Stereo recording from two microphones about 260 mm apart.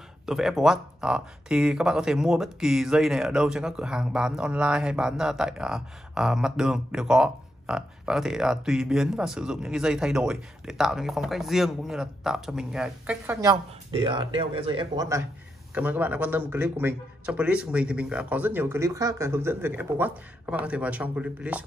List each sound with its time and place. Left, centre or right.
0.3 s speech: centre